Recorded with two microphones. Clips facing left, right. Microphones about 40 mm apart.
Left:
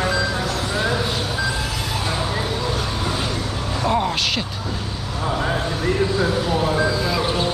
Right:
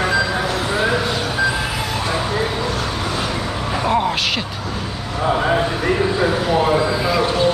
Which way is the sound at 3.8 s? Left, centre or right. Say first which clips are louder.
Right 2 dB; centre.